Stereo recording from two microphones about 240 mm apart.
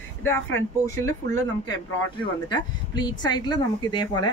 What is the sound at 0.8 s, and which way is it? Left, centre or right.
Speech, centre.